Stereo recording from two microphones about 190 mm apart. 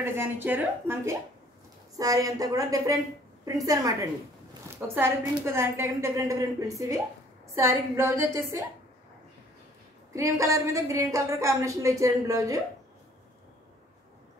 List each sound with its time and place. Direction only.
0.0 s a woman's voice: 10° right (ahead or behind)
7.5 s a woman's voice: 15° right (ahead or behind)
10.1 s a woman's voice: 15° right (ahead or behind)